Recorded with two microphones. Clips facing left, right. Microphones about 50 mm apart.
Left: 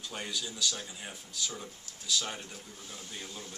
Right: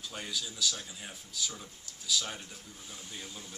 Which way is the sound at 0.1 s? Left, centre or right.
Centre.